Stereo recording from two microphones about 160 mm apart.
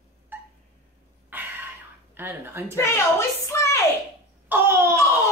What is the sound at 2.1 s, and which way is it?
Speech, 10° right (ahead or behind).